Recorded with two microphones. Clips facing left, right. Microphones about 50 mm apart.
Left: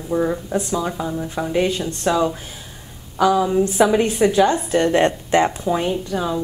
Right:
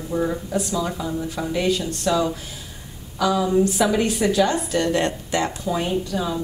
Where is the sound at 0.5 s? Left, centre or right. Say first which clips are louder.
Left 2 dB; left.